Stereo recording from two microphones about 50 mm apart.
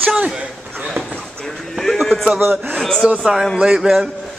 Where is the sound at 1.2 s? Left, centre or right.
Centre.